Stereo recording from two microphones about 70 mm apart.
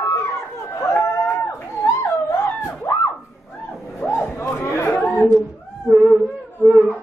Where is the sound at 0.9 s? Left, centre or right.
Left.